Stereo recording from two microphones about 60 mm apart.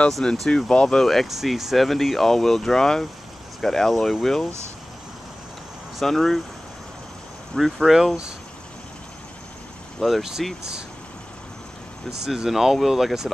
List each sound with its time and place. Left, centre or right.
0.2 s speech: centre
5.9 s speech: centre
7.5 s speech: centre
9.9 s speech: centre
12.3 s speech: centre